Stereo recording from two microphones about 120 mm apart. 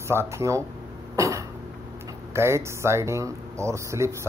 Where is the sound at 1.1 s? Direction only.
25° right (ahead or behind).